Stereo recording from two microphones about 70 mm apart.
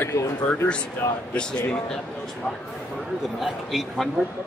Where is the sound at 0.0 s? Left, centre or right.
Left.